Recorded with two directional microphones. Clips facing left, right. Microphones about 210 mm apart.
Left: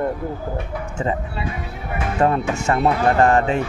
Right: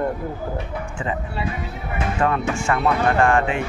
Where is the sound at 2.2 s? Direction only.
40° left (ahead or behind).